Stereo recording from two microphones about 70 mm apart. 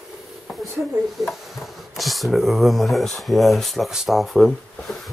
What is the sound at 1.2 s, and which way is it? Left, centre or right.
Speech, centre.